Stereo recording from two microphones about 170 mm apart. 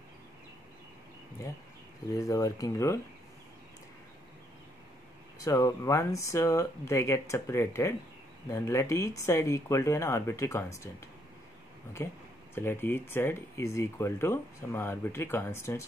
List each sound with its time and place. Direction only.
2.1 s speech: 20° left (ahead or behind)
5.4 s speech: 20° left (ahead or behind)
12.5 s speech: 15° left (ahead or behind)